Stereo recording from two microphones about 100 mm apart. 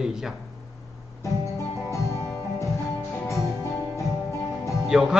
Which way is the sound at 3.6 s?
30° left (ahead or behind).